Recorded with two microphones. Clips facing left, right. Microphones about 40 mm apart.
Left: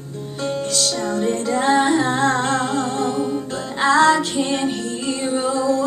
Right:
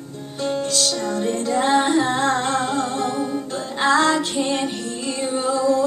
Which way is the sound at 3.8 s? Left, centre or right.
Left.